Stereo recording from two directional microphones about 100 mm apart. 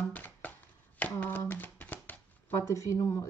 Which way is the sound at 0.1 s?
15° left (ahead or behind).